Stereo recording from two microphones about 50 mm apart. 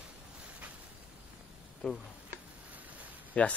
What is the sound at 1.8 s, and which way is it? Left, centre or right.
Speech, left.